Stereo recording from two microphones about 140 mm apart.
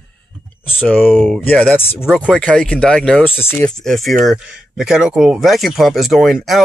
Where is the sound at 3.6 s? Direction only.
5° left (ahead or behind).